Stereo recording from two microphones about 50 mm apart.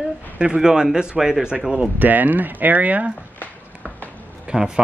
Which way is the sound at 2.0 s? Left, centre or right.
Right.